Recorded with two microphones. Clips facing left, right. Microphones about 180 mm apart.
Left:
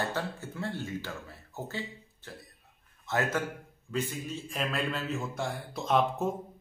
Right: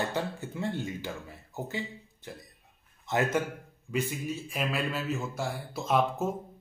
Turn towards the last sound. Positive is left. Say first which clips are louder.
# even
turn(degrees=-5)  # may be behind; listen again after turning